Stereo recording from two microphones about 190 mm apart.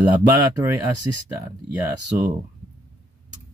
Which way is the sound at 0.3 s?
15° right (ahead or behind).